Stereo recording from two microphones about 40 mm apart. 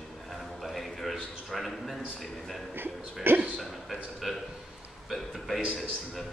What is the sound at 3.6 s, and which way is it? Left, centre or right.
A man's voice, centre.